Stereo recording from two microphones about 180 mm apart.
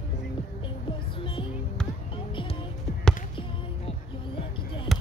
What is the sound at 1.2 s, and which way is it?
Music, 30° left (ahead or behind).